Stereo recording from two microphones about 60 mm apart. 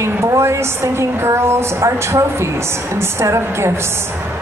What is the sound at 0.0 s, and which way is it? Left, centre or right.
A woman's voice, right.